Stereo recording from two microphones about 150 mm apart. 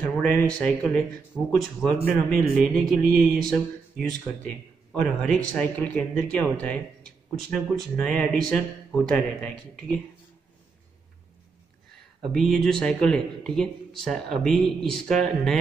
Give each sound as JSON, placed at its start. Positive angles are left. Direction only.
{"t": 0.0, "sound": "speech", "side_deg": 5}
{"t": 12.2, "sound": "speech", "side_deg": 0}